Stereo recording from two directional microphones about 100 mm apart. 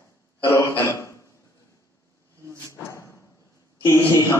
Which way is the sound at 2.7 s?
30° left (ahead or behind).